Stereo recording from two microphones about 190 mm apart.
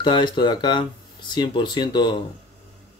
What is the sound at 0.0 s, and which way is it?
Speech, 25° left (ahead or behind).